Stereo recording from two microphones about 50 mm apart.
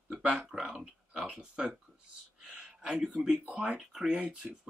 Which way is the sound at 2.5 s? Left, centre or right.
Right.